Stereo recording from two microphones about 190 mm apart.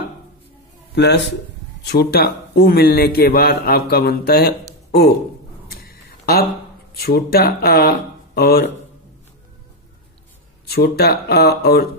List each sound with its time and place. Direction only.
0.9 s a man's voice: 65° left (ahead or behind)
5.8 s a sound: 55° left (ahead or behind)
7.0 s a man's voice: 55° left (ahead or behind)
10.7 s a man's voice: 55° left (ahead or behind)